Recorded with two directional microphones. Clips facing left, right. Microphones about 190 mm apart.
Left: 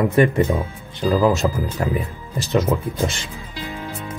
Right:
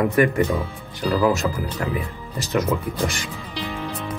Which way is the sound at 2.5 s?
15° left (ahead or behind).